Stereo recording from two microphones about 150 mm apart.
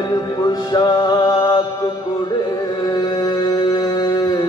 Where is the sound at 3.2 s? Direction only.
30° left (ahead or behind).